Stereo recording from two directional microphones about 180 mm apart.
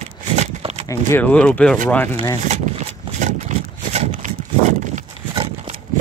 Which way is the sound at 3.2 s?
40° right (ahead or behind).